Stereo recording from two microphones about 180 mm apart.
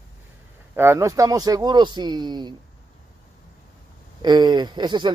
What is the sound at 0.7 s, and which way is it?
Speech, 15° right (ahead or behind).